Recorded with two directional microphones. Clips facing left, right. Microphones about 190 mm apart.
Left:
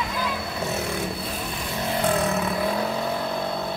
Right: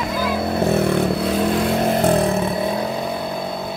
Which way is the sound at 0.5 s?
55° right (ahead or behind).